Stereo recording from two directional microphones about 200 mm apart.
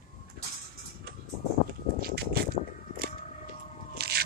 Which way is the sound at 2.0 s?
50° right (ahead or behind).